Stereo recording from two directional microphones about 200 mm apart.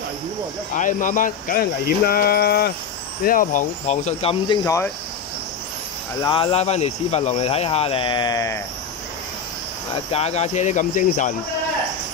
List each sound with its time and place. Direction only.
0.7 s speech: 40° left (ahead or behind)
4.6 s speech: 15° left (ahead or behind)
6.2 s speech: 25° left (ahead or behind)
10.1 s speech: 30° left (ahead or behind)